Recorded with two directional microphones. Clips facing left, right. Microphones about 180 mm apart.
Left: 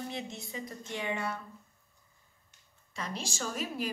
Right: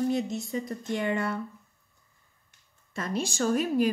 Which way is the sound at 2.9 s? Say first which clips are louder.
Right 8 dB; 50° right (ahead or behind).